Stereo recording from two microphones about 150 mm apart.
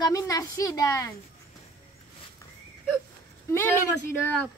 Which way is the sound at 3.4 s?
15° left (ahead or behind).